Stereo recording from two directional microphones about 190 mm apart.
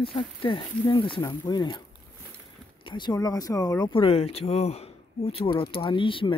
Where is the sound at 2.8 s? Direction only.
25° left (ahead or behind).